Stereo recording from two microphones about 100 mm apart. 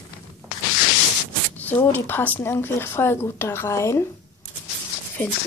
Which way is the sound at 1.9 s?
20° left (ahead or behind).